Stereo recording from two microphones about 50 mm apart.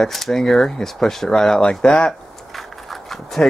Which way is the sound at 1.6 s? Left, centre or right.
Centre.